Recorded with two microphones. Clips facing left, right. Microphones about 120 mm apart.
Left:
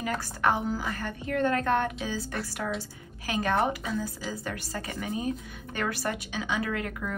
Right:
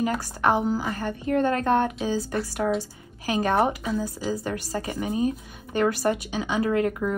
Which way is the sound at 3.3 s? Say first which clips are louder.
Right 4 dB; 30° right (ahead or behind).